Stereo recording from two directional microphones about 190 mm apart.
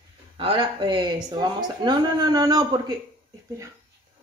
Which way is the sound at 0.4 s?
25° right (ahead or behind).